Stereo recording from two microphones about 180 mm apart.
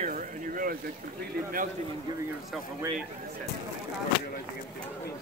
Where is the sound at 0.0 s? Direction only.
50° right (ahead or behind).